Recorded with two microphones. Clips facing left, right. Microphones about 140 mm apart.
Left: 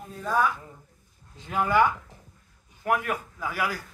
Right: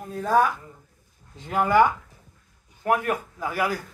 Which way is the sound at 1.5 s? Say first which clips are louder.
Right 3 dB; 30° right (ahead or behind).